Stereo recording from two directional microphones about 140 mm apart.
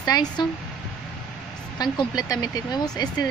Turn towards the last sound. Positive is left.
turn(degrees=30)  # may be behind; listen again after turning